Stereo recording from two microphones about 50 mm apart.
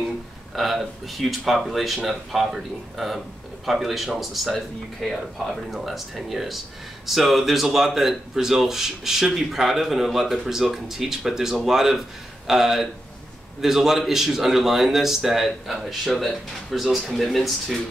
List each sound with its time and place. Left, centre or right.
0.6 s a man's voice: centre